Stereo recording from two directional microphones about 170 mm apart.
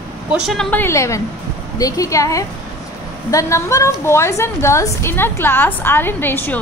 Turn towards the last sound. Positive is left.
turn(degrees=10)  # may be behind; listen again after turning